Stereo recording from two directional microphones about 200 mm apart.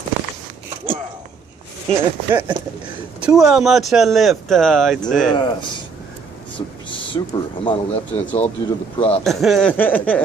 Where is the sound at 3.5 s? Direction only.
Centre (ahead or behind).